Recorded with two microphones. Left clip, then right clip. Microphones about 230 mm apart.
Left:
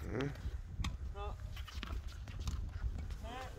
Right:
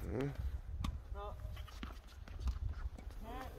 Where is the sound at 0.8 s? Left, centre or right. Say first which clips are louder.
Left 2 dB; centre.